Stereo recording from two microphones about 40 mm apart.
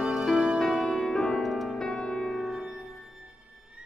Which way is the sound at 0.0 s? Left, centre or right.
Centre.